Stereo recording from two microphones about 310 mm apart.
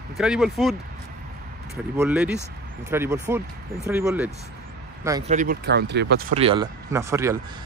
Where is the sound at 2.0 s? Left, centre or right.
Centre.